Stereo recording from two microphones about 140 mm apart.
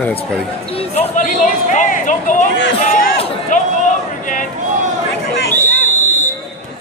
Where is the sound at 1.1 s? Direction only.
65° left (ahead or behind).